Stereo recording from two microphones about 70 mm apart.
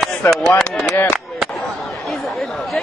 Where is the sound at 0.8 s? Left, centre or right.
Left.